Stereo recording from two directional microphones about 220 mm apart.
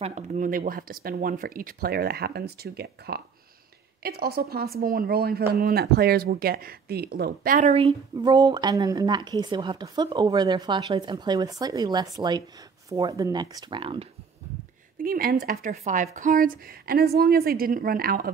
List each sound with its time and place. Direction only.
0.0 s a woman's voice: 30° right (ahead or behind)
15.0 s speech: 40° right (ahead or behind)